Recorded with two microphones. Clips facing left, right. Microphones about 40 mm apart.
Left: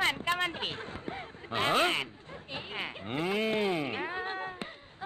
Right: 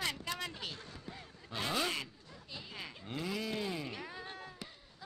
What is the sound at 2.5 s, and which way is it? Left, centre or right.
Sheep, left.